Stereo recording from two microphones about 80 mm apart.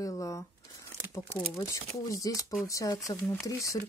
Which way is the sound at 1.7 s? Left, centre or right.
Left.